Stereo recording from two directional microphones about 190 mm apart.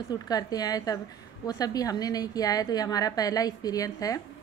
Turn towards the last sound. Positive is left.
turn(degrees=20)  # may be behind; listen again after turning